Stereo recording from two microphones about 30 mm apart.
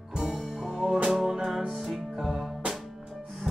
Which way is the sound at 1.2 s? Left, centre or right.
Right.